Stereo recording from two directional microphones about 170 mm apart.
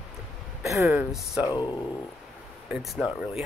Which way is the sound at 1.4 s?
25° left (ahead or behind).